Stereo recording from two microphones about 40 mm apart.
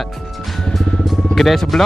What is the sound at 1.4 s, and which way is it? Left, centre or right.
Speech, centre.